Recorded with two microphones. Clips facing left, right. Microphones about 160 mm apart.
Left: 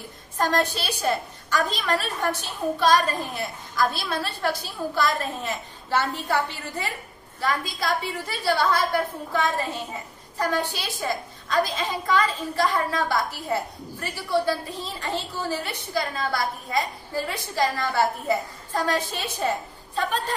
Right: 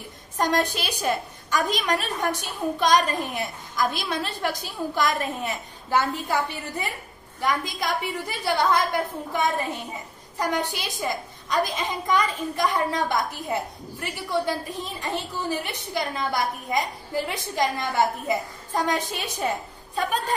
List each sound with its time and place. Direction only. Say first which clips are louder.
0.4 s a woman's voice: even; 15° right (ahead or behind)